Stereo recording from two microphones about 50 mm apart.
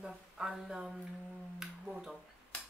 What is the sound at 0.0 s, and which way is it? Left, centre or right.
Speech, centre.